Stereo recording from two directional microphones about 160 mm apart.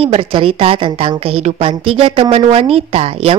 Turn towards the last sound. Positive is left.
turn(degrees=-40)  # may be behind; listen again after turning